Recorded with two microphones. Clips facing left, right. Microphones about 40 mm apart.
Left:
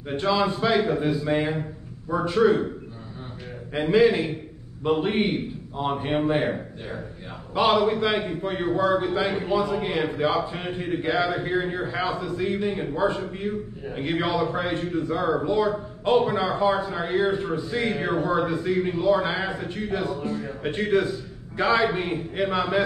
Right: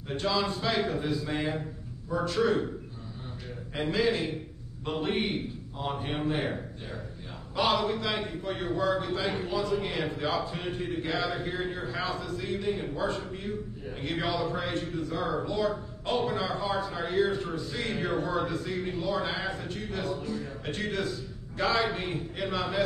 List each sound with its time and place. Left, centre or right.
0.1 s a man's voice: left
3.7 s a man's voice: centre
12.7 s a man's voice: centre
19.8 s a man's voice: centre
20.2 s speech: left
20.6 s a man's voice: left